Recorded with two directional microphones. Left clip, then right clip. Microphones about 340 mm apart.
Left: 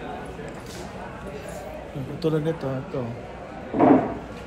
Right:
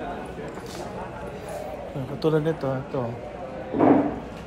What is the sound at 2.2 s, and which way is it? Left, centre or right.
Speech, centre.